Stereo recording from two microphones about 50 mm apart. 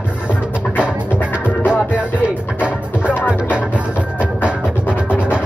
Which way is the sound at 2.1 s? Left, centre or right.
Left.